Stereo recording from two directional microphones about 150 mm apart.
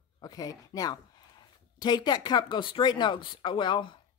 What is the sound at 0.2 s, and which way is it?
Speech, 25° left (ahead or behind).